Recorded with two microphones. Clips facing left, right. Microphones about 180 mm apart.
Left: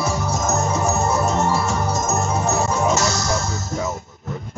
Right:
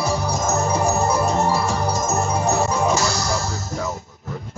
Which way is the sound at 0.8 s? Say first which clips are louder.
Right 1 dB; 30° right (ahead or behind).